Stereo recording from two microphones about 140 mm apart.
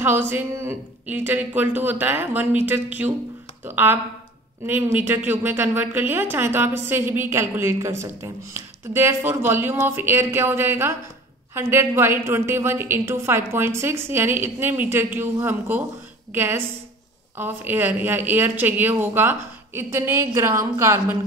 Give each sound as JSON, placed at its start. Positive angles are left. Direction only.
{"t": 0.0, "sound": "a woman's voice", "side_deg": -15}